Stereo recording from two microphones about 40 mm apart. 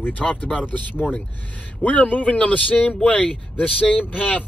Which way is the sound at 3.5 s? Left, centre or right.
Left.